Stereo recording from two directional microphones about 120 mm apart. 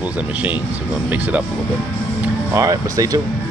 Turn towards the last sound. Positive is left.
turn(degrees=-30)  # may be behind; listen again after turning